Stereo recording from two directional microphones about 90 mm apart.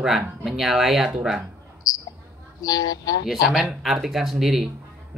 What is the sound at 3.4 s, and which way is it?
Speech, 5° right (ahead or behind).